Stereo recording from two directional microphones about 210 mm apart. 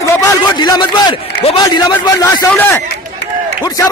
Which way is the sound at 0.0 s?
15° left (ahead or behind).